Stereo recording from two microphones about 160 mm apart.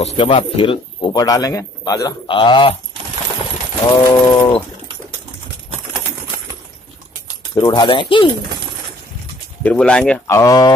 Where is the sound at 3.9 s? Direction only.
25° left (ahead or behind).